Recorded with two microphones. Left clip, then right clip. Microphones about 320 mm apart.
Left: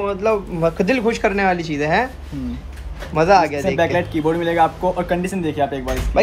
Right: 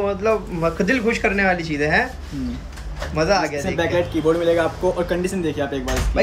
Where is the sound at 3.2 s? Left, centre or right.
Centre.